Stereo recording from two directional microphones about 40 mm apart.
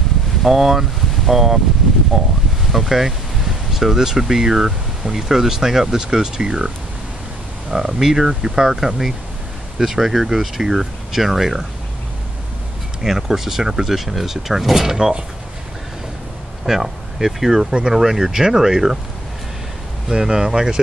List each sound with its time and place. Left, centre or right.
0.4 s speech: centre
7.7 s speech: centre
13.0 s speech: centre
16.6 s speech: centre
20.1 s speech: centre